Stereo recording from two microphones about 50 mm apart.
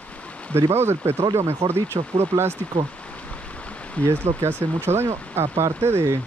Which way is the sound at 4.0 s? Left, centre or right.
Left.